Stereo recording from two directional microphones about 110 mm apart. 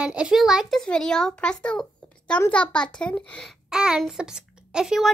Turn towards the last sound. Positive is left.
turn(degrees=-5)  # may be behind; listen again after turning